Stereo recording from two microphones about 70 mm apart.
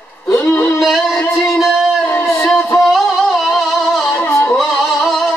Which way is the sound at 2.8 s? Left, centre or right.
Centre.